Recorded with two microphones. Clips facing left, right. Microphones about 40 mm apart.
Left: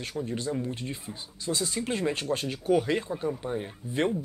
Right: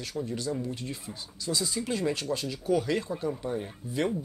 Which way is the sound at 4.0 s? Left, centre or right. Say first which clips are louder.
Left 2 dB; left.